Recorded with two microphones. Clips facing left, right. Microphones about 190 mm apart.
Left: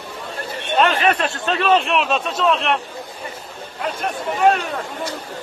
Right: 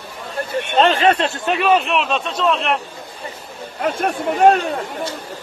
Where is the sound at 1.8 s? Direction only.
Centre (ahead or behind).